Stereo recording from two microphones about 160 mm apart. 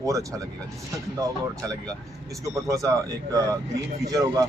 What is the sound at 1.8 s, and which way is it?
Speech, 20° right (ahead or behind).